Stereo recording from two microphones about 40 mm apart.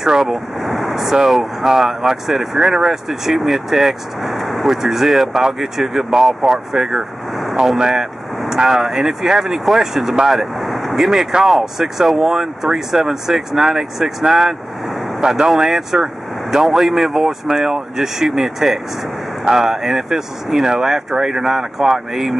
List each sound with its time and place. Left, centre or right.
0.0 s vehicle: centre
1.3 s speech: centre
7.8 s speech: centre
10.6 s vehicle: centre
11.1 s speech: centre
11.4 s speech: centre